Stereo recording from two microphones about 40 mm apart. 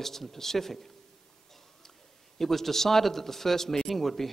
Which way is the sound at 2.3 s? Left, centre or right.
Centre.